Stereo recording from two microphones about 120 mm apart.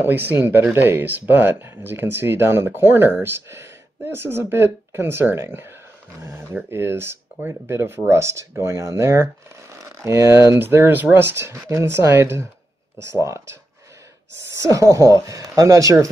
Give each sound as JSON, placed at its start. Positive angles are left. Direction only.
{"t": 0.0, "sound": "speech", "side_deg": -15}
{"t": 14.6, "sound": "speech", "side_deg": -25}